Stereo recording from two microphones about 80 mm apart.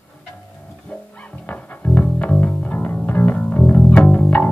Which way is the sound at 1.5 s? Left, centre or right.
Centre.